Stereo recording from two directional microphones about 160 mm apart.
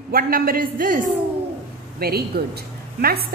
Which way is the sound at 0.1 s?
65° right (ahead or behind).